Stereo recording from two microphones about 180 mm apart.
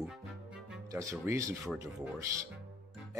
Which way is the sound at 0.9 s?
15° right (ahead or behind).